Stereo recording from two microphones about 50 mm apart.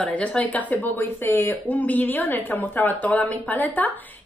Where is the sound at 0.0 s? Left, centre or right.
Left.